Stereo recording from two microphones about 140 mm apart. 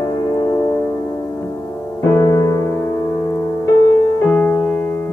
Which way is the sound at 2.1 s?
20° left (ahead or behind).